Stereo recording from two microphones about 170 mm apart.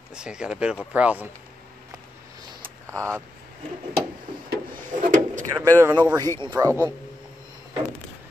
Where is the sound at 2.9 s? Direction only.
15° right (ahead or behind).